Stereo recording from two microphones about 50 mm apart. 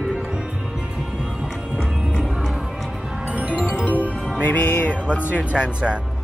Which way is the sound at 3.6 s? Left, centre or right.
Left.